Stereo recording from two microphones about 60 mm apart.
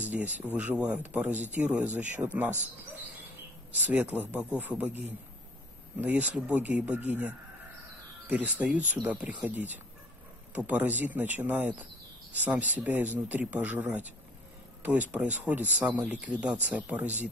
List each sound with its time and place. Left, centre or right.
0.1 s speech: right
3.7 s speech: right